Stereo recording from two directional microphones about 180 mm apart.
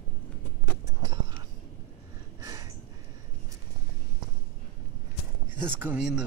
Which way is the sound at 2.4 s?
20° right (ahead or behind).